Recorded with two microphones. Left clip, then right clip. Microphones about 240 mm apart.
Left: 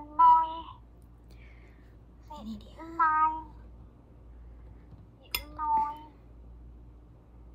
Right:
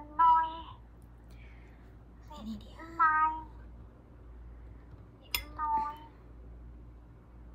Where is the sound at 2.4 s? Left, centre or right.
Centre.